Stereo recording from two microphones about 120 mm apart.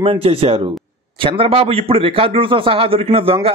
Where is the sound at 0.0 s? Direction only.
55° right (ahead or behind).